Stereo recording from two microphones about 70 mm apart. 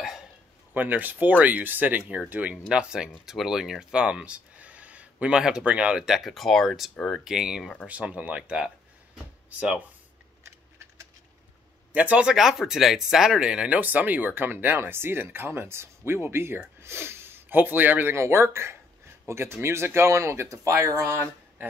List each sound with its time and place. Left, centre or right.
0.7 s speech: right
2.7 s speech: centre
6.0 s speech: centre
7.1 s speech: centre
7.8 s speech: centre
11.9 s speech: centre
12.4 s speech: centre; by 18.1 s right
18.1 s speech: right